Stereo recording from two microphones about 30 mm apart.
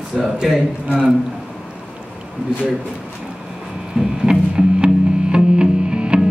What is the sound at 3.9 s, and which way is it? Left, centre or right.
Music, right.